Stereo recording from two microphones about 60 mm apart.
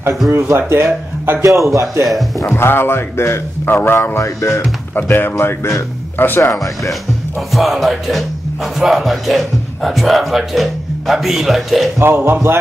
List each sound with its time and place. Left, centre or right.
0.3 s speech: right
1.4 s a man's voice: right
2.4 s a man's voice: left
4.9 s a man's voice: left
6.1 s speech: left
6.9 s speech: centre
12.0 s speech: right